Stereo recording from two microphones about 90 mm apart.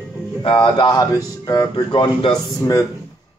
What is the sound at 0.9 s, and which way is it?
Music, 40° left (ahead or behind).